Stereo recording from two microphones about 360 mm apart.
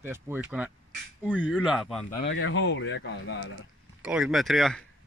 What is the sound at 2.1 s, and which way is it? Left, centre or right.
Speech, left.